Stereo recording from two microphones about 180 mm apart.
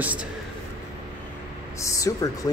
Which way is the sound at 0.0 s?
10° right (ahead or behind).